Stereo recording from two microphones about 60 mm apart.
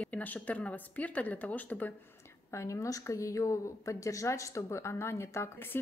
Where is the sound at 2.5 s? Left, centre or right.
Left.